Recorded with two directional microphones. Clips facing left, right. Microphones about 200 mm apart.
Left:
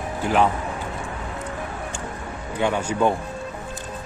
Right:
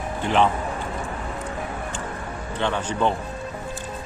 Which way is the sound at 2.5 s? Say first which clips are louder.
Left 3 dB; 10° left (ahead or behind).